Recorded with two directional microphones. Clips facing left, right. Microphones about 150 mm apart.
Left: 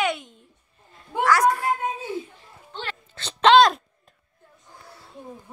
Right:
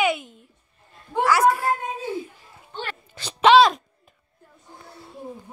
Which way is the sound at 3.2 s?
10° right (ahead or behind).